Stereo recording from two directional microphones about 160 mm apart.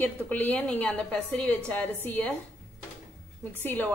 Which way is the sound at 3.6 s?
10° left (ahead or behind).